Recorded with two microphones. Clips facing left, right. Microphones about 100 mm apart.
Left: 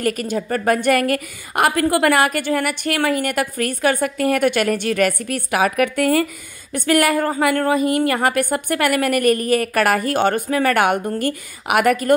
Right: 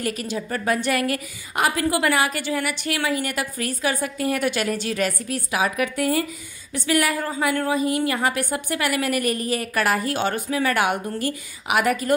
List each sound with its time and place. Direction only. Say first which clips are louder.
0.0 s a woman's voice: left 6 dB; 55° left (ahead or behind)